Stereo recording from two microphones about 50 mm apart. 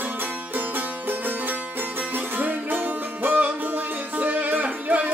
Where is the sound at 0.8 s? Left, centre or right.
Right.